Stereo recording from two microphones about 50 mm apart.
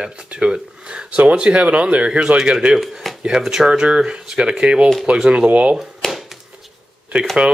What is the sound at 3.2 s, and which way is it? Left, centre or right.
Speech, centre.